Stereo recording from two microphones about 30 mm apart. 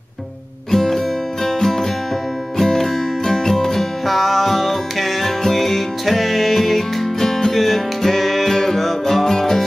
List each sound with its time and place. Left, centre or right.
0.7 s music: centre
4.1 s music: centre
7.2 s music: centre
7.5 s music: centre